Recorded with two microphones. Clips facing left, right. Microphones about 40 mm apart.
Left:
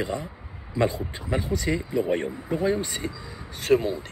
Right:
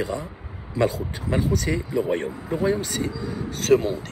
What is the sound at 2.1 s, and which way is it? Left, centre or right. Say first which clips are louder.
Speech: right 1 dB; centre.